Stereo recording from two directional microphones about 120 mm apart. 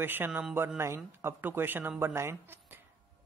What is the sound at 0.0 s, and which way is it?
Speech, 15° right (ahead or behind).